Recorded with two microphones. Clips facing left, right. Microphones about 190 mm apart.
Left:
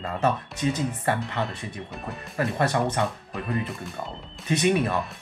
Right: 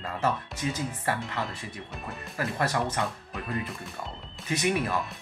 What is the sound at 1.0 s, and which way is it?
Speech, 25° left (ahead or behind).